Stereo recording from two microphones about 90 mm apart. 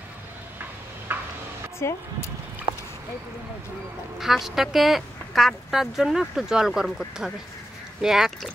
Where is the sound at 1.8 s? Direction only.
30° left (ahead or behind).